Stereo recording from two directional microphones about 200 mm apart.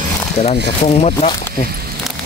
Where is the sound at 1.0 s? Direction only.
35° left (ahead or behind).